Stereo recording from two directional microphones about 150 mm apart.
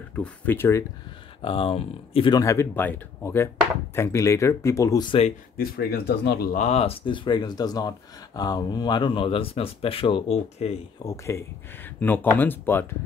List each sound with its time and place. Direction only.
0.1 s speech: 10° left (ahead or behind)
1.4 s speech: 40° left (ahead or behind)
2.3 s speech: 20° left (ahead or behind)
5.6 s speech: 90° left
6.6 s speech: 45° left (ahead or behind)
7.1 s speech: 30° left (ahead or behind)
11.1 s speech: 20° left (ahead or behind)